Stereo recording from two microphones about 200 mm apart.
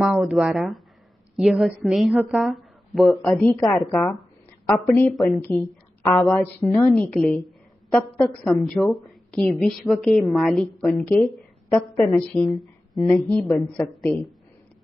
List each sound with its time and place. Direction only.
0.0 s a woman's voice: 5° right (ahead or behind)
12.9 s speech: 15° left (ahead or behind)